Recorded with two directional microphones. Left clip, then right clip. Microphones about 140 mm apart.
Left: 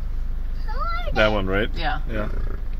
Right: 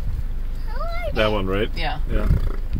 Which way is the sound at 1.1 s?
5° right (ahead or behind).